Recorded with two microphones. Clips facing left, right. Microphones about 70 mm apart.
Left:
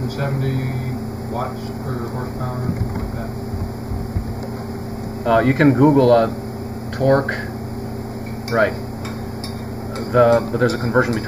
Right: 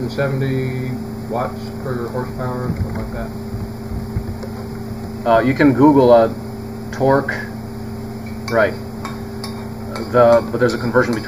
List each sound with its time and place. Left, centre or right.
0.2 s speech: right
5.2 s speech: centre
8.5 s speech: centre
10.1 s speech: centre